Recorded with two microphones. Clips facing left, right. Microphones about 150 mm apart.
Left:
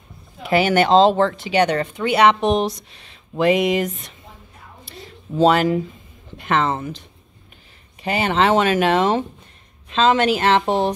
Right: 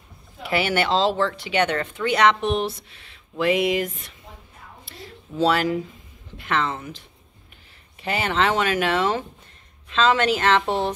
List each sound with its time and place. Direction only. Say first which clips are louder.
0.5 s speech: left 6 dB; 40° left (ahead or behind)
1.5 s speech: left 3 dB; 35° left (ahead or behind)
2.0 s a woman's voice: left 3 dB; 10° left (ahead or behind)
4.8 s a sound: left 4 dB; 20° left (ahead or behind)
6.3 s speech: left 4 dB; 20° left (ahead or behind)
6.6 s speech: left 5 dB; 55° left (ahead or behind)
8.0 s a woman's voice: left 4 dB; 15° left (ahead or behind)